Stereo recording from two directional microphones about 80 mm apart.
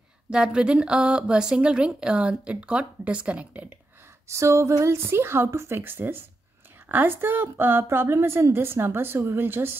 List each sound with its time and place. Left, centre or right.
0.3 s a woman's voice: centre
4.3 s a woman's voice: right